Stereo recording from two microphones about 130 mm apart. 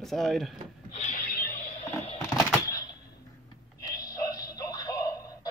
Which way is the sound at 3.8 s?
30° left (ahead or behind).